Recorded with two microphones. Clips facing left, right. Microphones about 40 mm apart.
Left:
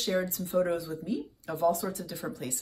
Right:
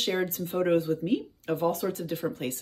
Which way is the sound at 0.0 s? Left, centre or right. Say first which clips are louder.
Right 2 dB; right.